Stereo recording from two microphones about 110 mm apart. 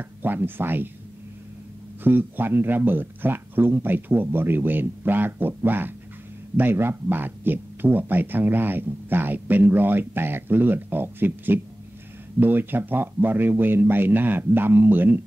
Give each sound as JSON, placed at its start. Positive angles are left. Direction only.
{"t": 0.0, "sound": "speech", "side_deg": -20}
{"t": 2.0, "sound": "speech", "side_deg": -20}